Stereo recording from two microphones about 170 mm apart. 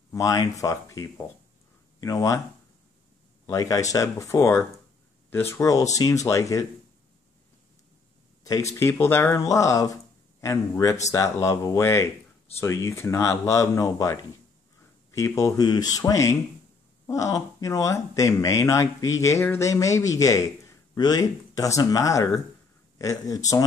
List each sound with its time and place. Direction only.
0.1 s speech: 20° left (ahead or behind)
3.4 s speech: 20° left (ahead or behind)
8.5 s speech: 20° left (ahead or behind)